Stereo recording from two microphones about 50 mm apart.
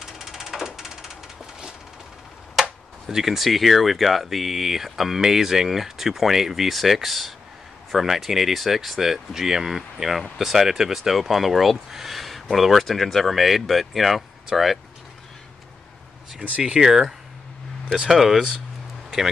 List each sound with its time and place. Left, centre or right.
0.0 s a sound: centre
2.6 s speech: centre
16.3 s speech: centre
18.1 s speech: centre